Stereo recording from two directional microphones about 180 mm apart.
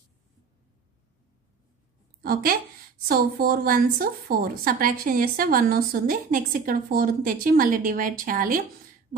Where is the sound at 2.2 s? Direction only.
55° right (ahead or behind).